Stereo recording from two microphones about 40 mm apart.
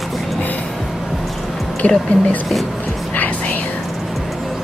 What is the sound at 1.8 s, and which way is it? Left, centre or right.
Speech, left.